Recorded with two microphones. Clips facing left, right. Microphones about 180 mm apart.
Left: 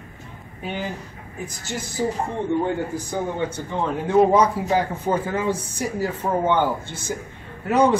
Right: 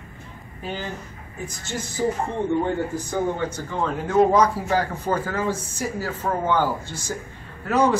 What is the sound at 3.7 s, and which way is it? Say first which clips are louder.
Speech: left 3 dB; 25° left (ahead or behind).